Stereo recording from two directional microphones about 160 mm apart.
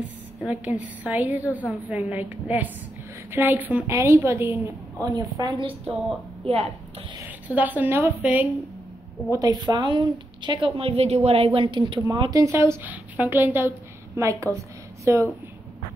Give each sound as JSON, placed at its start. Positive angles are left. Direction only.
{"t": 0.5, "sound": "a woman's voice", "side_deg": -10}
{"t": 7.2, "sound": "a woman's voice", "side_deg": -10}
{"t": 9.3, "sound": "a woman's voice", "side_deg": -25}